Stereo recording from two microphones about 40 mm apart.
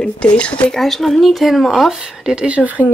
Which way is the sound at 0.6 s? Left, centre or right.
Centre.